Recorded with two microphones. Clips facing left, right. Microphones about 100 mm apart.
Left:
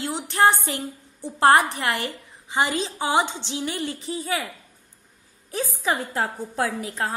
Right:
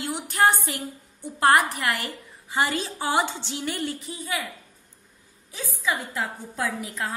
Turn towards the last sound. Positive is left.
turn(degrees=30)  # may be behind; listen again after turning